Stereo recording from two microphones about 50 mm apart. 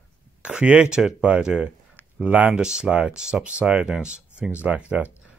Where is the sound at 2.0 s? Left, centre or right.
Right.